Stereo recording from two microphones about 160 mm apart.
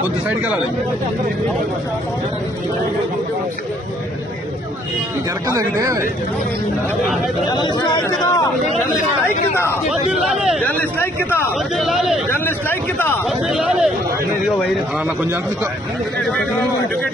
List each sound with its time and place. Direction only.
5.5 s speech: 20° right (ahead or behind)
7.4 s speech: 25° left (ahead or behind)
9.8 s a man's voice: 5° right (ahead or behind)
10.6 s speech: 10° left (ahead or behind)
11.7 s speech: centre (ahead or behind)
12.4 s speech: 10° left (ahead or behind)
13.5 s a man's voice: 5° right (ahead or behind)